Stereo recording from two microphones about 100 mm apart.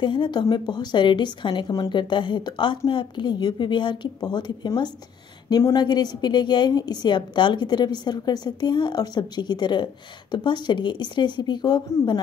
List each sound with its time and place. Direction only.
0.0 s a woman's voice: 55° left (ahead or behind)